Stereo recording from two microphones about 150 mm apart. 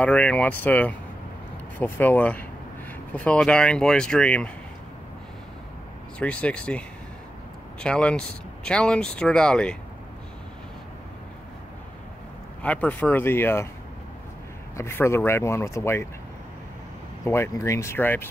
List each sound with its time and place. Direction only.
0.0 s speech: 10° left (ahead or behind)
6.1 s speech: 10° left (ahead or behind)
7.8 s speech: 5° left (ahead or behind)
12.6 s speech: 10° left (ahead or behind)
14.8 s speech: 15° left (ahead or behind)
17.2 s speech: 20° left (ahead or behind)